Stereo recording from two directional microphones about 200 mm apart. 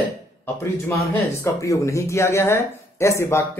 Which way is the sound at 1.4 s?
15° left (ahead or behind).